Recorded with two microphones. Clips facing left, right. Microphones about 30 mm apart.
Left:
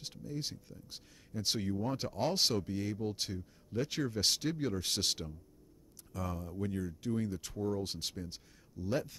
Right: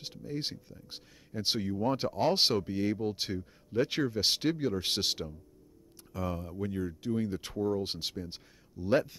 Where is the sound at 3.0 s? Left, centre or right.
Centre.